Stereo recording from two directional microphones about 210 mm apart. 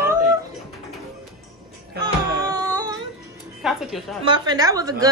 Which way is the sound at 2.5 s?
20° right (ahead or behind).